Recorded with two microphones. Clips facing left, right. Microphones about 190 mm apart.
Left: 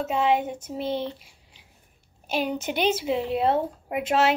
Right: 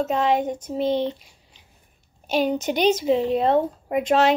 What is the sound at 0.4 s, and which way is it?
Speech, 5° left (ahead or behind).